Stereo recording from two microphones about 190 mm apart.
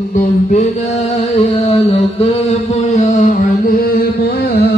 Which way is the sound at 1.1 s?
30° left (ahead or behind).